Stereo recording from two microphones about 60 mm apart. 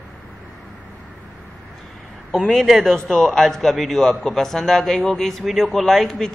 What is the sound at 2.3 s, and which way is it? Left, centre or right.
A man's voice, centre.